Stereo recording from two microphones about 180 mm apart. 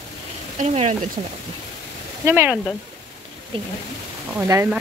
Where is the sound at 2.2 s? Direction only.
15° right (ahead or behind).